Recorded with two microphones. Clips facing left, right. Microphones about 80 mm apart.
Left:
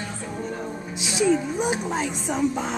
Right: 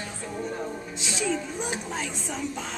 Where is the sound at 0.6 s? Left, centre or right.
Centre.